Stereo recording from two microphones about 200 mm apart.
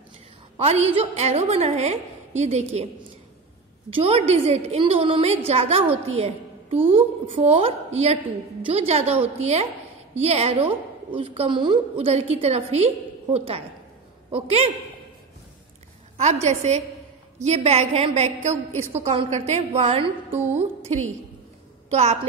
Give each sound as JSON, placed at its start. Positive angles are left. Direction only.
{"t": 0.6, "sound": "a woman's voice", "side_deg": -30}
{"t": 3.9, "sound": "a woman's voice", "side_deg": -30}
{"t": 16.2, "sound": "a woman's voice", "side_deg": -35}
{"t": 20.2, "sound": "music", "side_deg": -10}
{"t": 21.9, "sound": "a woman's voice", "side_deg": -35}